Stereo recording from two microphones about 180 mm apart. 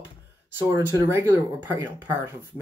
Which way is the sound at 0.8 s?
10° right (ahead or behind).